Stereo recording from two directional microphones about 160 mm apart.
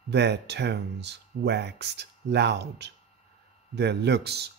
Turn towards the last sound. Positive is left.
turn(degrees=-90)